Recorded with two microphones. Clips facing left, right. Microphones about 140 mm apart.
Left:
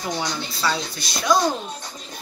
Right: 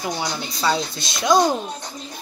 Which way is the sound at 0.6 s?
20° right (ahead or behind).